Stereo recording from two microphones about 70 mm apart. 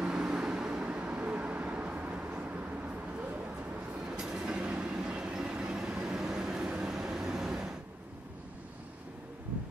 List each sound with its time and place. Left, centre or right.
0.0 s vehicle: centre
4.0 s train: centre